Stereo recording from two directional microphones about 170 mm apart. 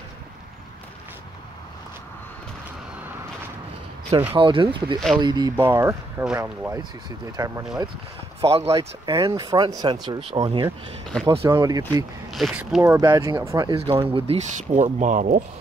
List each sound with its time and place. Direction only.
4.4 s speech: 30° right (ahead or behind)
5.7 s speech: 15° right (ahead or behind)
8.4 s speech: 35° right (ahead or behind)
8.7 s speech: 20° right (ahead or behind)
12.4 s speech: centre (ahead or behind)
13.0 s speech: 20° right (ahead or behind)
13.7 s speech: 30° right (ahead or behind); by 15.4 s 50° right (ahead or behind)